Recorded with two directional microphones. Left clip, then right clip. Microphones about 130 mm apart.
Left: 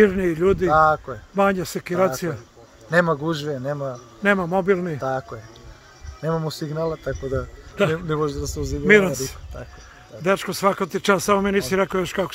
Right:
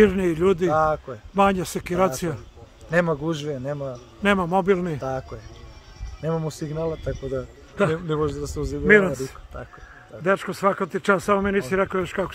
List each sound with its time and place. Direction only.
0.0 s speech: 35° right (ahead or behind)
0.7 s a man's voice: centre (ahead or behind)
1.3 s speech: 35° right (ahead or behind)
2.9 s a man's voice: centre (ahead or behind)
4.5 s a man's voice: 25° right (ahead or behind)
5.0 s a man's voice: 5° right (ahead or behind)
8.8 s speech: 20° left (ahead or behind)